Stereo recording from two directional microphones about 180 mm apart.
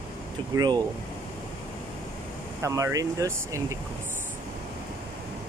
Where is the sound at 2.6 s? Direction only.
15° right (ahead or behind).